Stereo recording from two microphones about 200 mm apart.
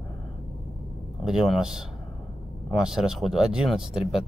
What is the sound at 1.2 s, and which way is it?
Speech, centre (ahead or behind).